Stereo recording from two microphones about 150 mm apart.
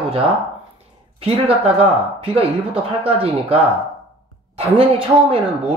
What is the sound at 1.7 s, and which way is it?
Speech, 40° right (ahead or behind).